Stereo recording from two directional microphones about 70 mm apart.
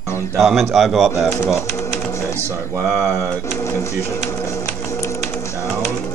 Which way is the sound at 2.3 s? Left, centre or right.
Right.